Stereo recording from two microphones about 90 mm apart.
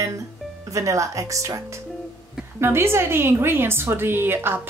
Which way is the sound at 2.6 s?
30° right (ahead or behind).